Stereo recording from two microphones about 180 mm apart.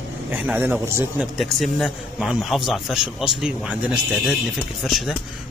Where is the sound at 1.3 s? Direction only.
Centre (ahead or behind).